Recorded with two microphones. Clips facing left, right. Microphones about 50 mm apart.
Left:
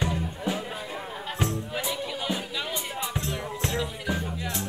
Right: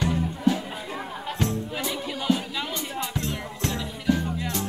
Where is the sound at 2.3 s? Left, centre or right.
Left.